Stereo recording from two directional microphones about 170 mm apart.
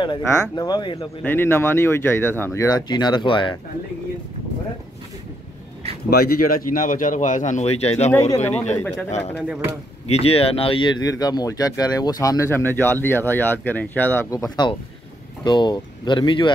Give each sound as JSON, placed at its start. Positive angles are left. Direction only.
{"t": 0.0, "sound": "speech", "side_deg": 25}
{"t": 1.2, "sound": "speech", "side_deg": 10}
{"t": 6.0, "sound": "speech", "side_deg": 65}
{"t": 8.1, "sound": "speech", "side_deg": 15}
{"t": 9.4, "sound": "speech", "side_deg": -5}
{"t": 10.0, "sound": "speech", "side_deg": 35}
{"t": 14.3, "sound": "speech", "side_deg": 25}